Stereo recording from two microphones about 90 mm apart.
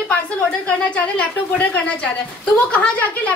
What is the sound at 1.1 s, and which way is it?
A woman's voice, 15° left (ahead or behind).